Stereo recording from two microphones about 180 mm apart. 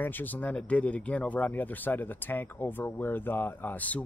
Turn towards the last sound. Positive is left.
turn(degrees=10)  # may be behind; listen again after turning